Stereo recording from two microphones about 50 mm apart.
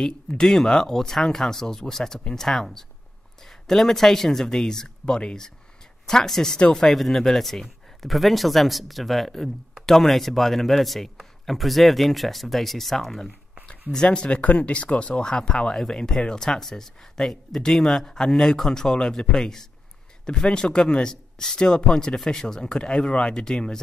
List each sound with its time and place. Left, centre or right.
0.4 s speech: centre
13.9 s speech: centre